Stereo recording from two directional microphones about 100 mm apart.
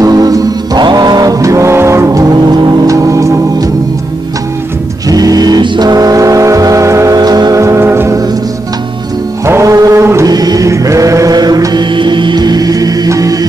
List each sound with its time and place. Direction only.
0.0 s music: 40° right (ahead or behind)
5.0 s vehicle: 40° right (ahead or behind)
7.2 s music: 40° right (ahead or behind); by 8.2 s 25° right (ahead or behind)
9.5 s music: 30° right (ahead or behind)
10.3 s music: 40° right (ahead or behind)
11.9 s music: 55° right (ahead or behind); by 13.5 s 35° right (ahead or behind)